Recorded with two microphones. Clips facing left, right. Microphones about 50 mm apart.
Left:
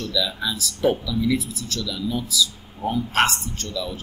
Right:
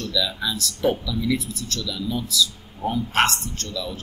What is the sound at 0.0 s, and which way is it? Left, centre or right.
Speech, centre.